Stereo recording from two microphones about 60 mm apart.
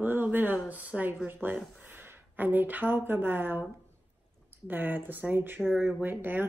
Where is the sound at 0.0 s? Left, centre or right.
Right.